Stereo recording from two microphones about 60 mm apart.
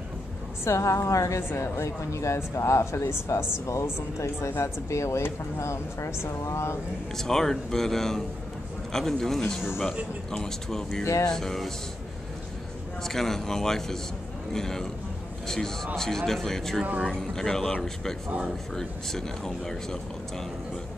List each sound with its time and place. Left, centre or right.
0.7 s a woman's voice: left
7.2 s speech: centre
9.6 s a man's voice: centre
10.3 s speech: centre
13.0 s speech: centre
18.8 s speech: centre